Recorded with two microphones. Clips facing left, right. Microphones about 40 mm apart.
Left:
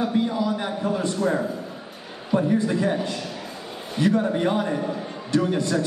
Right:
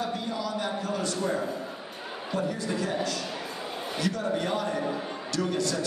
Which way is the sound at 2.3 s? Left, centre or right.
Left.